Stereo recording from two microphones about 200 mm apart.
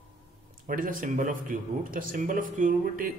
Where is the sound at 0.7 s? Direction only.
45° right (ahead or behind).